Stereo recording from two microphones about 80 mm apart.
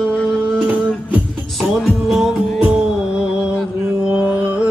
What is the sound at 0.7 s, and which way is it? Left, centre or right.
Music, centre.